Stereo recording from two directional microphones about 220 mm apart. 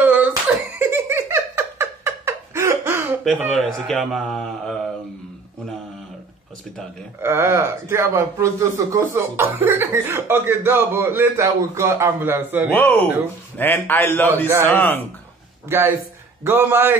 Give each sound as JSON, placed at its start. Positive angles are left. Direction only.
{"t": 0.0, "sound": "laughter", "side_deg": -5}
{"t": 0.7, "sound": "giggle", "side_deg": -10}
{"t": 7.2, "sound": "speech", "side_deg": -10}
{"t": 12.7, "sound": "a man's voice", "side_deg": 10}
{"t": 16.4, "sound": "speech", "side_deg": -10}